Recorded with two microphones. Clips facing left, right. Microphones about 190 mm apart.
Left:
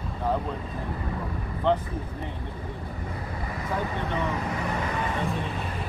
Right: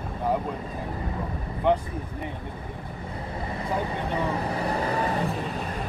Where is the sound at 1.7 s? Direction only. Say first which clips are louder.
Right 1 dB; 15° right (ahead or behind).